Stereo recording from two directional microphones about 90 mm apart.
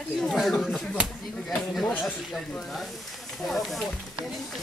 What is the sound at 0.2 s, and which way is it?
Speech, centre (ahead or behind).